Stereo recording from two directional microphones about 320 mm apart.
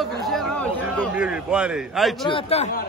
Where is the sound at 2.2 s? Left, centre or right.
Centre.